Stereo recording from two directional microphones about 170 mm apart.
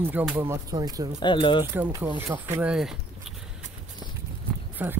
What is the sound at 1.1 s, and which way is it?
Speech, 30° left (ahead or behind).